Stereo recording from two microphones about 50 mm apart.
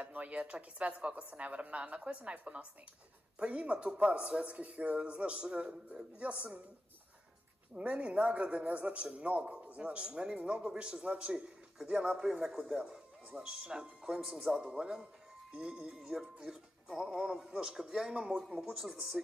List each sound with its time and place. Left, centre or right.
0.0 s a man's voice: right
7.7 s a man's voice: right
14.2 s speech: centre
14.6 s a man's voice: right
17.3 s speech: centre
18.6 s speech: centre